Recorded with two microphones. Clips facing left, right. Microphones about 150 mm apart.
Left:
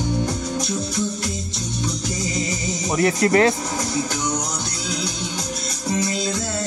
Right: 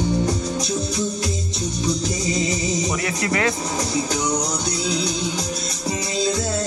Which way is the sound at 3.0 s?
40° left (ahead or behind).